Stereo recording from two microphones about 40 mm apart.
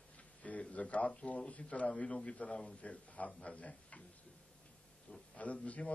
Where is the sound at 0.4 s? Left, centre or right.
Left.